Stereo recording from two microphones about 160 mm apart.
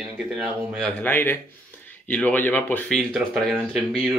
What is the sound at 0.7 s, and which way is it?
Speech, 10° left (ahead or behind).